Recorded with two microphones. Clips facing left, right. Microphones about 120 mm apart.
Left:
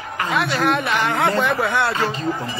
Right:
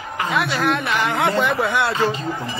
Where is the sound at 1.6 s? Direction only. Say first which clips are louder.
Even; 25° left (ahead or behind).